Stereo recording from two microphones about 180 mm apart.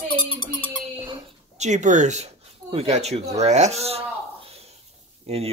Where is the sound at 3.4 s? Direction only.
40° right (ahead or behind).